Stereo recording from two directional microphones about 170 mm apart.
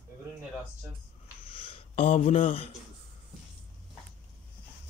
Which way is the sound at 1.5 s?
30° left (ahead or behind).